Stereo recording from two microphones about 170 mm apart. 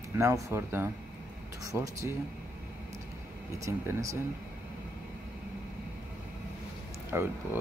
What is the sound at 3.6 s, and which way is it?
Speech, 20° right (ahead or behind).